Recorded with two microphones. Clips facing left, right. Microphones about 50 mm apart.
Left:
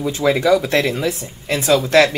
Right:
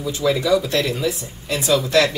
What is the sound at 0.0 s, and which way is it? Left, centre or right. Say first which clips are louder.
Speech: left 4 dB; left.